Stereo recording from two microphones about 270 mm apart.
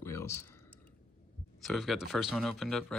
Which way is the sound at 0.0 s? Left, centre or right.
Centre.